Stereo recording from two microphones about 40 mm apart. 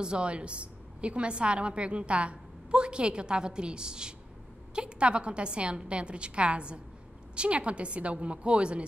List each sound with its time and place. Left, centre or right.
0.0 s a woman's voice: right